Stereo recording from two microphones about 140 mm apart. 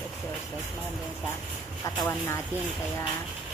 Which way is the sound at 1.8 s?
25° left (ahead or behind).